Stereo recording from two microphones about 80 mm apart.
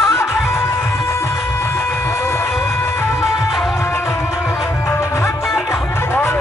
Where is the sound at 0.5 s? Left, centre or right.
Left.